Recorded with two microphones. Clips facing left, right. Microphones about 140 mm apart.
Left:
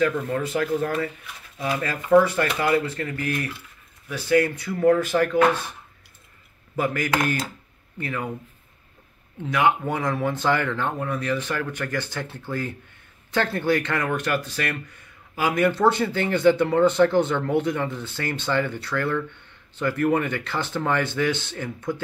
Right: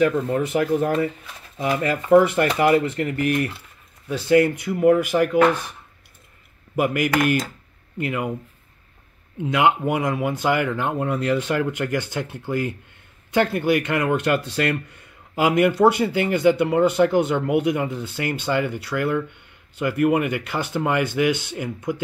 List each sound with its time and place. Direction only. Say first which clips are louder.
0.0 s speech: right 3 dB; 20° right (ahead or behind)
6.7 s speech: right 3 dB; 15° right (ahead or behind)
9.4 s speech: right 2 dB; 20° right (ahead or behind)
11.0 s speech: right 4 dB; 25° right (ahead or behind)